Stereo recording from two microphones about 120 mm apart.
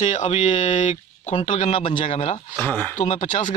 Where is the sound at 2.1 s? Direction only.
60° left (ahead or behind).